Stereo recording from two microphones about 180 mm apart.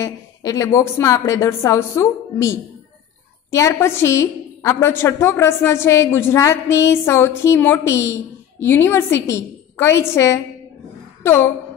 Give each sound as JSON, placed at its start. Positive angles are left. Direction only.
{"t": 0.0, "sound": "a woman's voice", "side_deg": 20}